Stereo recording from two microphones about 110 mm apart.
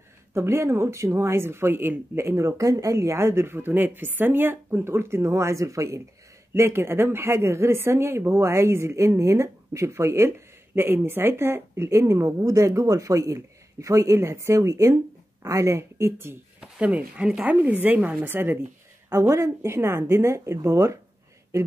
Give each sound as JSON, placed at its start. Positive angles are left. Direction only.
{"t": 0.3, "sound": "a woman's voice", "side_deg": -25}
{"t": 16.7, "sound": "a woman's voice", "side_deg": -10}